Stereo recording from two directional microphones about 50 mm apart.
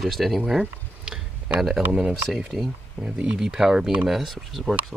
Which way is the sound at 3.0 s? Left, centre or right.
Right.